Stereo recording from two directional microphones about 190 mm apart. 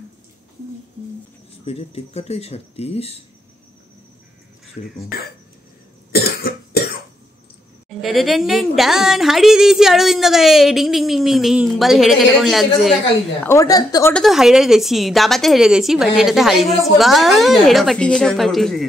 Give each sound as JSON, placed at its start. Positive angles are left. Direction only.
{"t": 1.7, "sound": "speech", "side_deg": 30}
{"t": 4.9, "sound": "speech", "side_deg": 50}
{"t": 6.1, "sound": "cough", "side_deg": 55}
{"t": 8.0, "sound": "a woman's voice", "side_deg": 0}
{"t": 13.4, "sound": "a woman's voice", "side_deg": 15}
{"t": 14.1, "sound": "a woman's voice", "side_deg": 0}